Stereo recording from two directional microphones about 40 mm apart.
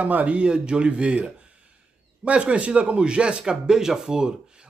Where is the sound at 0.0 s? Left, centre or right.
Right; by 4.3 s centre.